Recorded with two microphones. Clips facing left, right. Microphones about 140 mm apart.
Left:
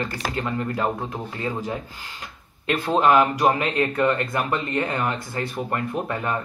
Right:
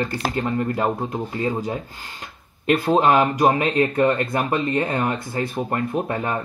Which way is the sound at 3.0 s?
35° right (ahead or behind).